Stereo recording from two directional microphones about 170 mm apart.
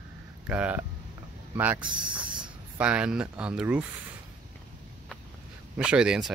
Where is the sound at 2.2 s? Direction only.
25° right (ahead or behind).